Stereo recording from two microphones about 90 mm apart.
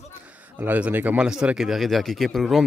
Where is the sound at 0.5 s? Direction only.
20° right (ahead or behind).